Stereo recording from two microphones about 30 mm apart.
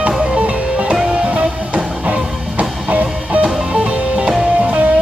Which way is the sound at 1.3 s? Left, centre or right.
Right.